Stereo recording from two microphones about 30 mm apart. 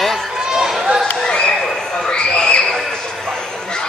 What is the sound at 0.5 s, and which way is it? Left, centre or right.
Run, centre.